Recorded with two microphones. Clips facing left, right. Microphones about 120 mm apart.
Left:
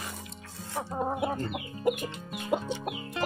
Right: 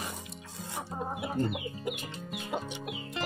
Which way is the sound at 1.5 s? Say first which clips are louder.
Left 6 dB; 50° left (ahead or behind).